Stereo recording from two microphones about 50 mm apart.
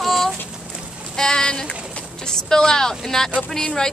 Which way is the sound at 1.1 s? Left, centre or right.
Centre.